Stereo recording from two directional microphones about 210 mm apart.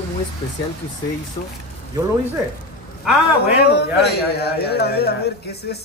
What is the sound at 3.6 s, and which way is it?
A man's voice, 50° left (ahead or behind).